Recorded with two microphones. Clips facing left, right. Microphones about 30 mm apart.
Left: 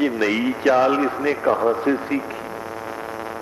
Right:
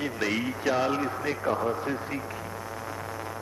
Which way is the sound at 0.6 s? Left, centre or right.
Left.